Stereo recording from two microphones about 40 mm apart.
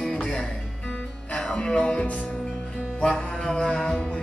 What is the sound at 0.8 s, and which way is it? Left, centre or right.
Music, left.